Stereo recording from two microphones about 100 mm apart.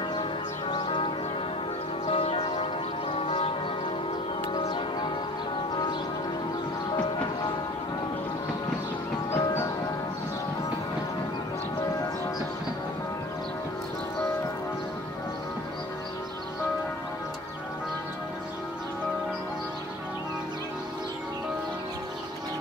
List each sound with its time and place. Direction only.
0.1 s church bell: 50° left (ahead or behind)
2.0 s music: 75° left (ahead or behind)
6.9 s music: 45° left (ahead or behind)
9.3 s music: 25° left (ahead or behind)